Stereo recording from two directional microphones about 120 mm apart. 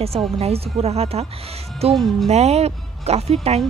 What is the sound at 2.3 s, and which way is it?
Speech, 65° right (ahead or behind).